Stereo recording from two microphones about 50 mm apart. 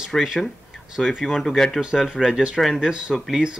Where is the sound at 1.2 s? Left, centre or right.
Centre.